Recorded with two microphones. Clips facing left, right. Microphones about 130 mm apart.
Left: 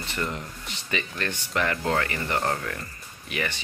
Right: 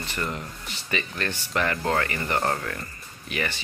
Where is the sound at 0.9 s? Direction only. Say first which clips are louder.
Right 1 dB; 15° left (ahead or behind).